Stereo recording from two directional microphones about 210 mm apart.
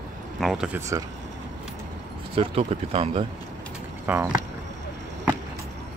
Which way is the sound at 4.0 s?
15° right (ahead or behind).